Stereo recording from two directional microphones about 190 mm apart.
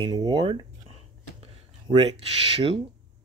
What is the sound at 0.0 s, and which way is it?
Speech, 25° right (ahead or behind).